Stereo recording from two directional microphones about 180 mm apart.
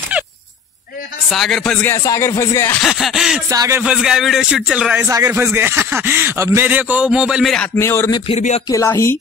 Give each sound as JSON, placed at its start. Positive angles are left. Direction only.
{"t": 0.1, "sound": "a sound", "side_deg": -10}
{"t": 1.3, "sound": "music", "side_deg": 0}
{"t": 2.8, "sound": "a man's voice", "side_deg": 0}
{"t": 3.4, "sound": "speech", "side_deg": -15}
{"t": 3.8, "sound": "a man's voice", "side_deg": -5}
{"t": 5.0, "sound": "speech", "side_deg": -15}
{"t": 8.3, "sound": "speech", "side_deg": 35}
{"t": 8.6, "sound": "music", "side_deg": 15}